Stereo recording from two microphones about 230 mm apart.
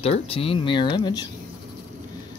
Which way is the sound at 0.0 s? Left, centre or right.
Left.